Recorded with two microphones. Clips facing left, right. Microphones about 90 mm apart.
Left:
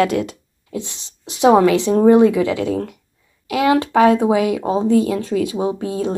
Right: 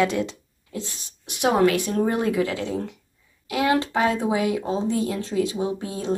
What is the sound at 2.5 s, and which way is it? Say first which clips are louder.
Speech: left 7 dB; 60° left (ahead or behind).